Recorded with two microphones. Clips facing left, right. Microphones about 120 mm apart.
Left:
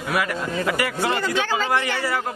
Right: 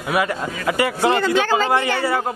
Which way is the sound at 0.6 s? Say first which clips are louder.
Right 7 dB; 25° right (ahead or behind).